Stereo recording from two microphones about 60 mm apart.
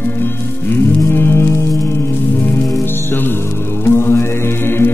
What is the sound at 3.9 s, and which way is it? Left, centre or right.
Music, left.